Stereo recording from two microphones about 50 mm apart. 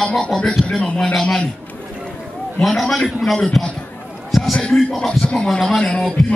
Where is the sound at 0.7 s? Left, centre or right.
Centre.